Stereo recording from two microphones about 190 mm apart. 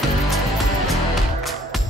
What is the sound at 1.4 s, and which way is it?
Music, centre (ahead or behind).